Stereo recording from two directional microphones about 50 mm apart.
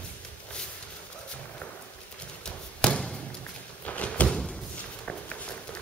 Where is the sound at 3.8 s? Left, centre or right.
Left.